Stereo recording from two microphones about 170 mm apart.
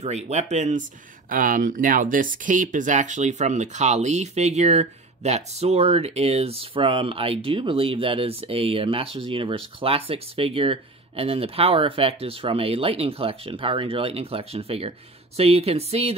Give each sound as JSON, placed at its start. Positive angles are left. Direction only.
{"t": 0.0, "sound": "speech", "side_deg": -40}